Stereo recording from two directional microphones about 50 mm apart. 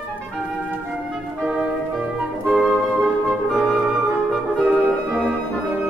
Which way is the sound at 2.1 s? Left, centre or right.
Centre.